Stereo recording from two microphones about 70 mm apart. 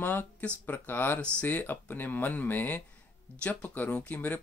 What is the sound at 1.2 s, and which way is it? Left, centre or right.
Speech, centre.